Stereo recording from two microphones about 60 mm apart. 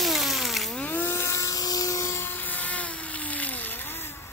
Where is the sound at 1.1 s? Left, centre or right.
Left.